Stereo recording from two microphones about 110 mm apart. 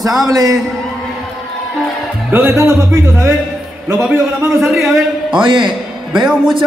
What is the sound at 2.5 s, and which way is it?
Speech, 25° right (ahead or behind).